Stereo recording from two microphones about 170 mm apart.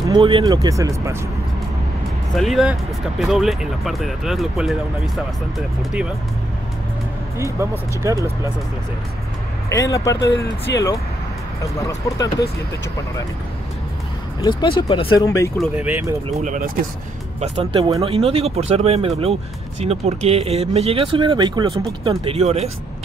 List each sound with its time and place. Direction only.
0.1 s speech: 30° right (ahead or behind)
0.5 s speech: 20° right (ahead or behind)
2.3 s speech: centre (ahead or behind)
8.0 s speech: 20° right (ahead or behind)
9.7 s speech: 20° left (ahead or behind)
10.7 s speech: 90° left
14.4 s speech: 25° left (ahead or behind)
15.2 s speech: 15° left (ahead or behind)
15.5 s speech: 5° right (ahead or behind)
16.3 s speech: 45° right (ahead or behind)
17.4 s speech: 35° right (ahead or behind)